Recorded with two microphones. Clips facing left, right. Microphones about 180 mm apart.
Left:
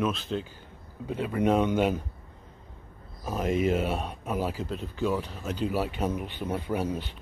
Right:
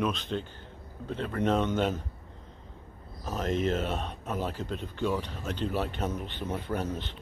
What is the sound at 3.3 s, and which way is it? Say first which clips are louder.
Speech: left 3 dB; 10° left (ahead or behind).